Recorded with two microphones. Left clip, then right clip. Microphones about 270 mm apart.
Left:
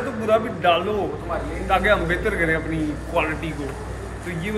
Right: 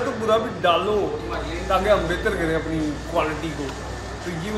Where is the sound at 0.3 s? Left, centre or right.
Centre.